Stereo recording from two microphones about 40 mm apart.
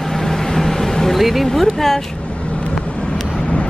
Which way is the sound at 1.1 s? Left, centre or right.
Centre.